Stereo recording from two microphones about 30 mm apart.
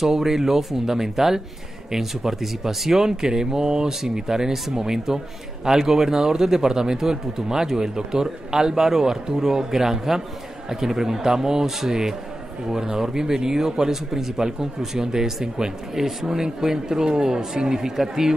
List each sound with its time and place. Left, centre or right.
0.1 s speech: centre